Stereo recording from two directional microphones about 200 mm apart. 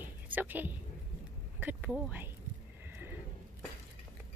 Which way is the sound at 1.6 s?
10° right (ahead or behind).